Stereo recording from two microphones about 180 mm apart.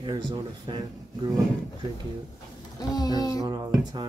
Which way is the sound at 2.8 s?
20° left (ahead or behind).